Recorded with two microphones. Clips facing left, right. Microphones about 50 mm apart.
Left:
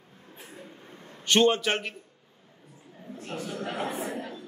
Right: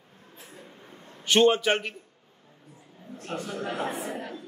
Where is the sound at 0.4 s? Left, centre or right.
Left.